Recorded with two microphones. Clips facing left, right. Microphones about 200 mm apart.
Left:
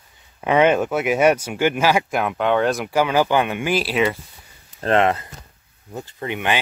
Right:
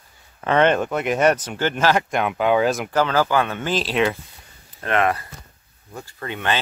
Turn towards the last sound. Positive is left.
turn(degrees=15)  # may be behind; listen again after turning